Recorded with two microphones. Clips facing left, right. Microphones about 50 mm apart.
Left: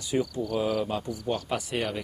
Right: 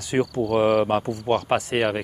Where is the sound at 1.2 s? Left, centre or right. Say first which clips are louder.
Right 8 dB; right.